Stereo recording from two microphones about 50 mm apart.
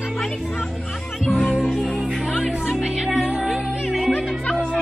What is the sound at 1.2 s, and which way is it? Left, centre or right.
Music, centre.